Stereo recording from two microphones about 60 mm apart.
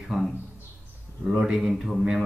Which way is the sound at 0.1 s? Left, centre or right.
Centre.